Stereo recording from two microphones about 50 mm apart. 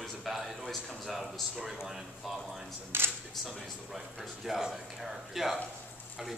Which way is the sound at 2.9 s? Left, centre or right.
Right.